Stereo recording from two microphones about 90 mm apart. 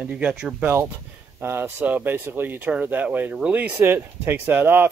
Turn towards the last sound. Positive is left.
turn(degrees=-25)  # may be behind; listen again after turning